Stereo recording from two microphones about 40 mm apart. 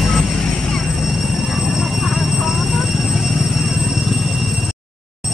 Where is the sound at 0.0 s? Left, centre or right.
Centre.